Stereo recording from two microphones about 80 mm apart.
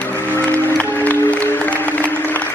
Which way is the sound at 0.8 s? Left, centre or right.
Centre.